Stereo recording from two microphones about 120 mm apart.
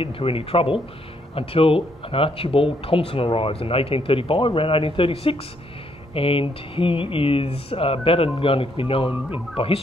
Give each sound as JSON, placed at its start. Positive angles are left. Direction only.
{"t": 0.0, "sound": "speech", "side_deg": 50}